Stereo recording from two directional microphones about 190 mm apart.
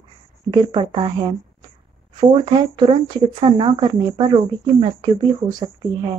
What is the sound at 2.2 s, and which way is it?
Speech, 25° right (ahead or behind).